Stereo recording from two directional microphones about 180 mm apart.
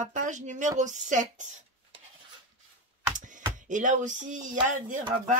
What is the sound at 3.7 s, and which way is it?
Speech, 45° right (ahead or behind).